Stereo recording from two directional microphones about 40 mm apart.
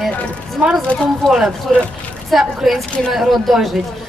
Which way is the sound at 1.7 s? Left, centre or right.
Centre.